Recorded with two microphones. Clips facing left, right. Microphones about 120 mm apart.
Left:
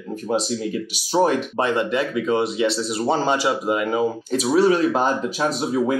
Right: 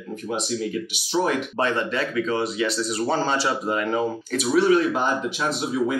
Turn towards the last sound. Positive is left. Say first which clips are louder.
# left 3 dB
turn(degrees=40)  # may be behind; listen again after turning